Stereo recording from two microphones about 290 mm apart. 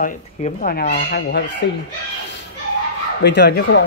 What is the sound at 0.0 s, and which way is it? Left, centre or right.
Speech, left.